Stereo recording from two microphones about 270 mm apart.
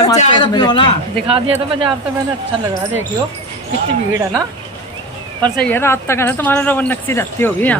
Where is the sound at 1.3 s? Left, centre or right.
Centre.